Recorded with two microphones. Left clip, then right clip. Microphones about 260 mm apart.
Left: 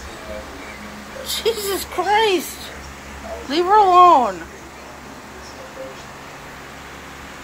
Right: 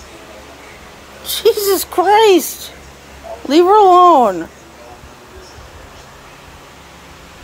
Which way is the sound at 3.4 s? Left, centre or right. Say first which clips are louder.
Right 6 dB; right.